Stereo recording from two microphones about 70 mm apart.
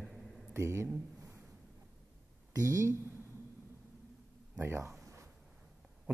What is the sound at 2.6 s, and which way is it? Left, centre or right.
Speech, right.